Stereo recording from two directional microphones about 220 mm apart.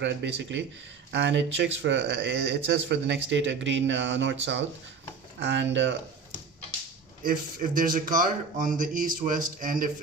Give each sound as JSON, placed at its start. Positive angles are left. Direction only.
{"t": 0.0, "sound": "speech", "side_deg": -55}
{"t": 7.2, "sound": "speech", "side_deg": -40}